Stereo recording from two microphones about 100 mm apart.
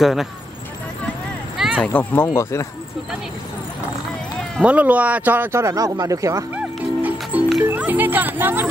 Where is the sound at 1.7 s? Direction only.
15° left (ahead or behind).